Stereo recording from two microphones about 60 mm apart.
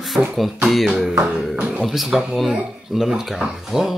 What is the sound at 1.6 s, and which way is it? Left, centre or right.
Speech, right.